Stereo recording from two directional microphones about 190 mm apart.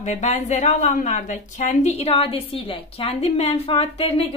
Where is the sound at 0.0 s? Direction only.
35° left (ahead or behind).